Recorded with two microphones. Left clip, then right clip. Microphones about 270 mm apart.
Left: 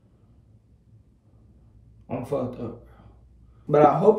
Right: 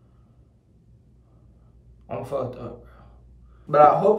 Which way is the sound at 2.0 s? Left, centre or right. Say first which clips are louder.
Right 1 dB; centre.